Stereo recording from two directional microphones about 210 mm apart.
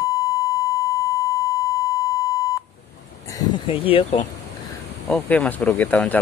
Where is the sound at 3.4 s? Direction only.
25° left (ahead or behind).